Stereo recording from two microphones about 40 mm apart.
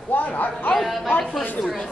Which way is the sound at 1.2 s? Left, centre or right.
Left.